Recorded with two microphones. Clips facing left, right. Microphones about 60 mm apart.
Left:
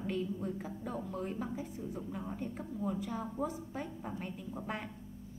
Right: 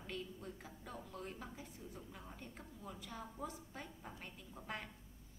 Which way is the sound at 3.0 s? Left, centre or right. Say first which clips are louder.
Left 11 dB; left.